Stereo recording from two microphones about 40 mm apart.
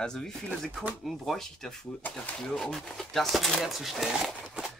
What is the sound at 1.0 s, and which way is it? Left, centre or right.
Speech, centre.